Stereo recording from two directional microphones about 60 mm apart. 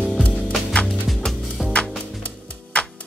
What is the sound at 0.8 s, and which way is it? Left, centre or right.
Music, centre.